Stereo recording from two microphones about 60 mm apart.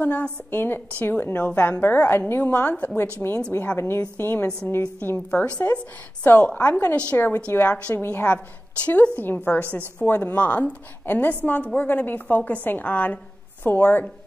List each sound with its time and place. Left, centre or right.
0.0 s a woman's voice: left
3.2 s a woman's voice: centre
3.5 s a woman's voice: left
5.3 s a woman's voice: left
7.9 s a woman's voice: left
8.8 s a woman's voice: left